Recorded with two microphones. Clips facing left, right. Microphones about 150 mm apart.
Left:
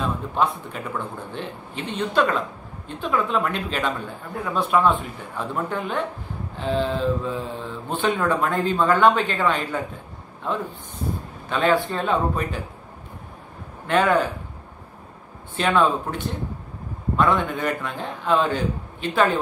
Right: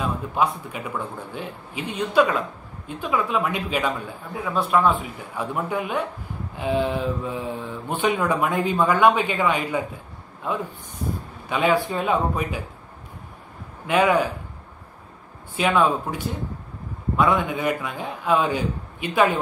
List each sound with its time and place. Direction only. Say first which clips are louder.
0.0 s speech: even; 10° right (ahead or behind)
11.4 s speech: even; 10° right (ahead or behind)
13.8 s speech: even; 10° right (ahead or behind)
15.5 s speech: even; 5° right (ahead or behind)